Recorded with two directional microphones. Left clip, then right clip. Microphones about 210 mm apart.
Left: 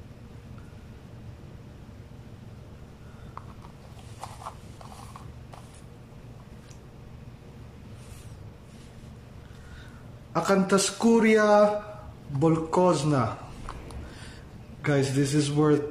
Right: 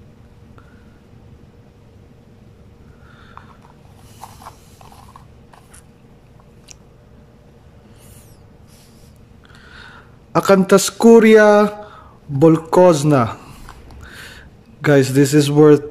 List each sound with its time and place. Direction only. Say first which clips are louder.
10.3 s speech: right 11 dB; 45° right (ahead or behind)
14.8 s speech: right 13 dB; 45° right (ahead or behind)